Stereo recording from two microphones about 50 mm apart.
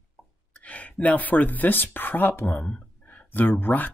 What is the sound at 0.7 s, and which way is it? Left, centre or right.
Speech, left.